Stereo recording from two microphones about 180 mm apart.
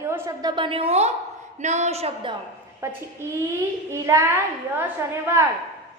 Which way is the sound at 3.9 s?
15° right (ahead or behind).